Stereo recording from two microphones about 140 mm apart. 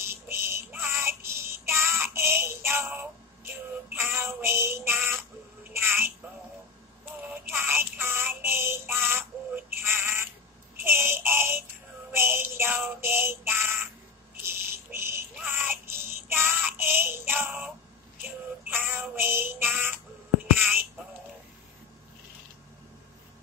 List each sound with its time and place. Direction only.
0.0 s child singing: 20° right (ahead or behind)
3.9 s synthetic singing: 20° right (ahead or behind)
4.4 s female singing: 20° right (ahead or behind)
5.7 s a sound: 15° right (ahead or behind)
7.5 s music: 15° right (ahead or behind)
9.8 s synthetic singing: 15° right (ahead or behind)
12.1 s music: 15° right (ahead or behind)
13.0 s child singing: 15° right (ahead or behind)
14.4 s a sound: 15° right (ahead or behind)
15.3 s child singing: 15° right (ahead or behind)
18.7 s synthetic singing: 15° right (ahead or behind)
19.6 s child singing: 15° right (ahead or behind)